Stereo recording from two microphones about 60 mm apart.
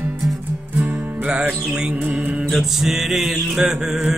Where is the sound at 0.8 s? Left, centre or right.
Right.